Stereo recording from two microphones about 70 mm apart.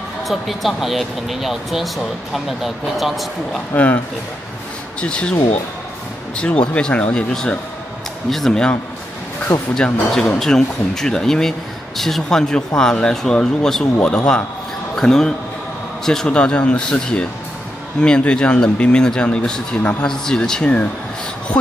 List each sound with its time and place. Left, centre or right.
0.3 s speech: centre
3.7 s speech: left
5.0 s speech: centre
8.3 s speech: centre
9.5 s speech: left
10.1 s speech: centre
19.8 s speech: left
20.1 s speech: centre